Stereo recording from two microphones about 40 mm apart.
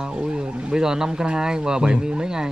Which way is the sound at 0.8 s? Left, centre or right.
Centre.